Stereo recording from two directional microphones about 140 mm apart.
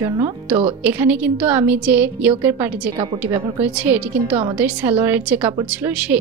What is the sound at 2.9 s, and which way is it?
Speech, 35° right (ahead or behind).